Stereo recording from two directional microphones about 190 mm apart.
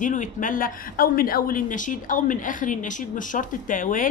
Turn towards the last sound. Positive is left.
turn(degrees=45)  # may be behind; listen again after turning